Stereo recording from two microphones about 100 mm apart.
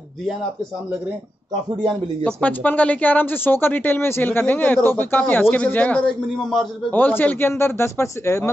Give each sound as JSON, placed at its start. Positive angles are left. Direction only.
{"t": 2.2, "sound": "a man's voice", "side_deg": 15}
{"t": 6.4, "sound": "a man's voice", "side_deg": 0}
{"t": 6.9, "sound": "speech", "side_deg": 20}